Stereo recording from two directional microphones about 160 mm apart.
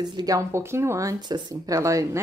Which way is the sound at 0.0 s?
25° right (ahead or behind).